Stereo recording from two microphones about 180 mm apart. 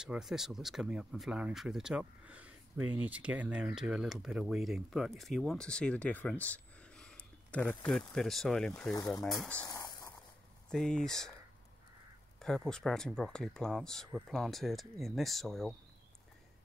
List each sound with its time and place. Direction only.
0.0 s speech: 5° right (ahead or behind)
9.7 s a sound: 20° left (ahead or behind)
10.7 s speech: 5° left (ahead or behind)
12.4 s speech: 5° left (ahead or behind)